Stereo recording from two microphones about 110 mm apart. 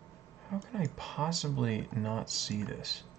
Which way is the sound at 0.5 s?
Centre (ahead or behind).